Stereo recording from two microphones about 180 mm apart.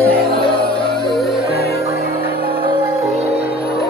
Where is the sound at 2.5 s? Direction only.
30° right (ahead or behind).